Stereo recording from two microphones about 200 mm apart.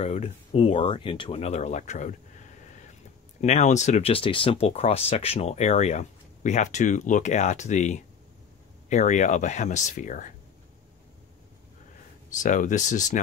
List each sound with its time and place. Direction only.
0.0 s speech: 30° left (ahead or behind)
3.3 s speech: 35° left (ahead or behind)
12.4 s speech: 40° left (ahead or behind)